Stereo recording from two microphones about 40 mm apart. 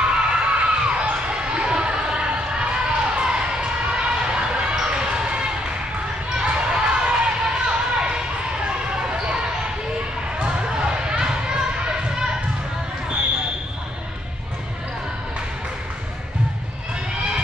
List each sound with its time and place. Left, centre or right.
0.0 s crowd: right
3.2 s basketball bounce: right
10.4 s basketball bounce: right